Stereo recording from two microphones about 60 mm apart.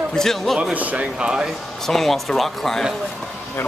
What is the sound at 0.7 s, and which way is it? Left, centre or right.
Speech, right.